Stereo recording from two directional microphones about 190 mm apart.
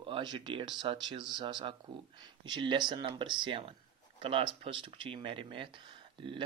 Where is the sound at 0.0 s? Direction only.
25° right (ahead or behind).